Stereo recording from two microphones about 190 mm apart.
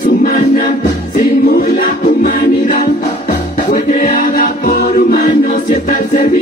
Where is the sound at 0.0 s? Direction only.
45° left (ahead or behind).